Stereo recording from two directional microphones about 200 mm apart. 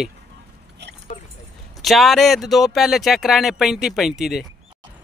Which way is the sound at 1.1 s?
35° left (ahead or behind).